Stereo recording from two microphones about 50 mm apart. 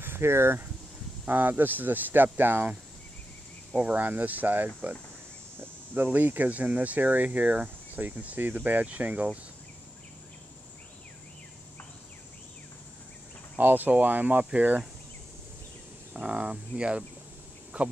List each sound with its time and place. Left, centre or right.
0.0 s speech: right
1.2 s speech: right
3.7 s speech: right
13.6 s speech: right
16.1 s speech: right